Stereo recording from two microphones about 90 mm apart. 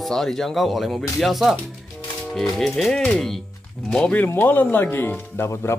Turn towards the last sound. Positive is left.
turn(degrees=25)  # may be behind; listen again after turning